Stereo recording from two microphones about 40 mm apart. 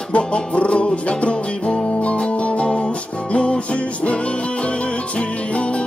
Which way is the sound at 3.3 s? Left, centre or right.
Left.